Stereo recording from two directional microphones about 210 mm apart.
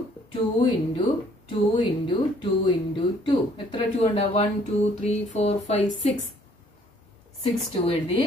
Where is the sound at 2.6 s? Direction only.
20° left (ahead or behind).